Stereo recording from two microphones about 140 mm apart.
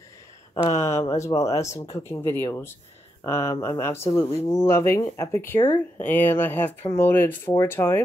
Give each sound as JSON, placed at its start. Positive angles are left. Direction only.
{"t": 0.9, "sound": "speech", "side_deg": 20}